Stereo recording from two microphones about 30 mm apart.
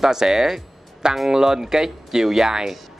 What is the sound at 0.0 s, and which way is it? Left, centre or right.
Speech, centre.